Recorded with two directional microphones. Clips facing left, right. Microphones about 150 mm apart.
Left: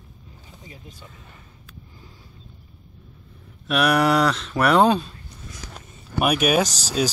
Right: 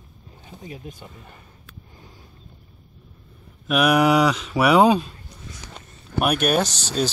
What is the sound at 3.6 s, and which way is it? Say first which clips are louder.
Speech: right 2 dB; 5° right (ahead or behind).